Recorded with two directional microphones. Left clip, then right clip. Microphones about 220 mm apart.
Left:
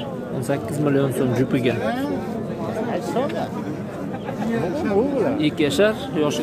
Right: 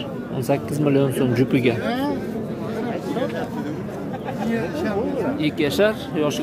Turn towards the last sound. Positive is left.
turn(degrees=5)  # may be behind; listen again after turning